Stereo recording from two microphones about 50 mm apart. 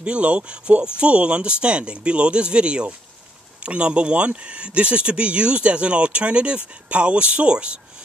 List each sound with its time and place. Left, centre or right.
0.0 s speech: right